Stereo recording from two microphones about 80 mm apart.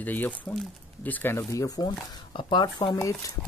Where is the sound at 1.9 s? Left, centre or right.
Left.